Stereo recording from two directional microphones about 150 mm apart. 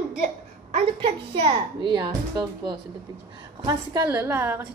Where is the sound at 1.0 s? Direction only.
35° right (ahead or behind); by 4.7 s 15° right (ahead or behind).